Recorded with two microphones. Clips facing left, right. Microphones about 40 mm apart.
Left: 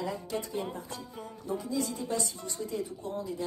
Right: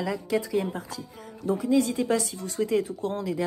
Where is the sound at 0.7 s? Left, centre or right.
Right.